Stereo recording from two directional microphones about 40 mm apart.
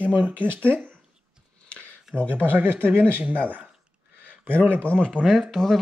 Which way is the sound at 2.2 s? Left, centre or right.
Right.